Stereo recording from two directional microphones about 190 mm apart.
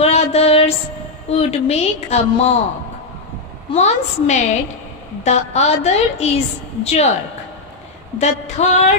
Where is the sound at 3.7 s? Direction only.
35° left (ahead or behind).